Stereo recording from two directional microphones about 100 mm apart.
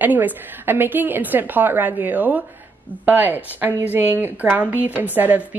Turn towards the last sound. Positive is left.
turn(degrees=-15)  # may be behind; listen again after turning